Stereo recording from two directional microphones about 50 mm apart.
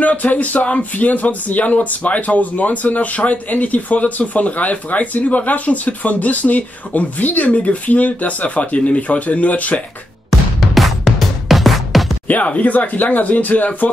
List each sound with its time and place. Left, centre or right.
0.0 s speech: left
10.7 s music: centre
12.3 s speech: left